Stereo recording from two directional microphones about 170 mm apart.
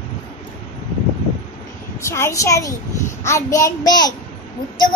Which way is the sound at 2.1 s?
15° left (ahead or behind).